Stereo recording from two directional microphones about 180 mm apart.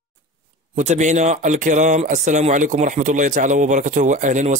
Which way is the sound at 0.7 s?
40° right (ahead or behind).